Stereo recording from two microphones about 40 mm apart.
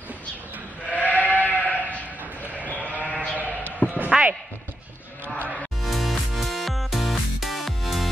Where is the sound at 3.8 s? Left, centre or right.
Left.